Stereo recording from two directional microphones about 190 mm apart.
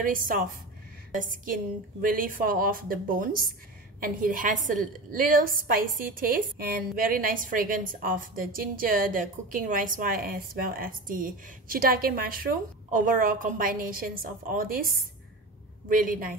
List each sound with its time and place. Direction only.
0.0 s a woman's voice: 45° right (ahead or behind)